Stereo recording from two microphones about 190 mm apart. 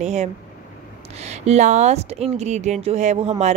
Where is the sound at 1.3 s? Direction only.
35° right (ahead or behind).